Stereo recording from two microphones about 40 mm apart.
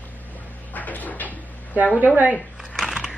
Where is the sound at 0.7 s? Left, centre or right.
Left.